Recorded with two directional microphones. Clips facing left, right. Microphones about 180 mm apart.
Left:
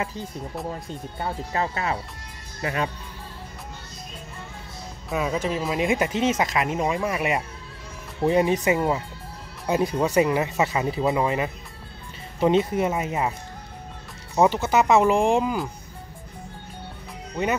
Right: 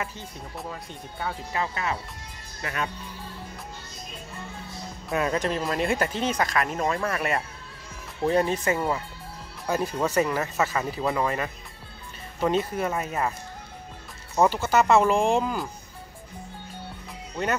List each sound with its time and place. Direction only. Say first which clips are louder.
1.2 s speech: left 3 dB; 35° left (ahead or behind)
5.1 s speech: even; centre (ahead or behind); by 13.3 s 15° left (ahead or behind)
14.3 s speech: left 2 dB; 20° left (ahead or behind)